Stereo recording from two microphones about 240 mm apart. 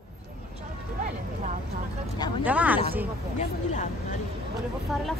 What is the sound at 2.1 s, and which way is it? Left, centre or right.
Speech, centre.